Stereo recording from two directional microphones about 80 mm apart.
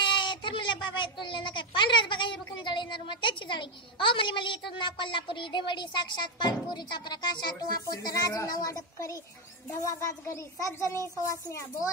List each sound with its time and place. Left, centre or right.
0.0 s a sound: left
1.2 s a woman's voice: left
7.8 s speech: left